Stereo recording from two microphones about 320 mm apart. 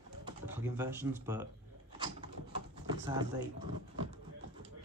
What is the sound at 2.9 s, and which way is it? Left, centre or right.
Speech, centre.